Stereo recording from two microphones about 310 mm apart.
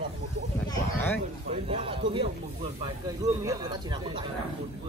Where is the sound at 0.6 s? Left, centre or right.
Centre.